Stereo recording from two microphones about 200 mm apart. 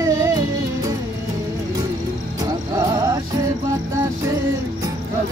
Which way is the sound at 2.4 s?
15° right (ahead or behind).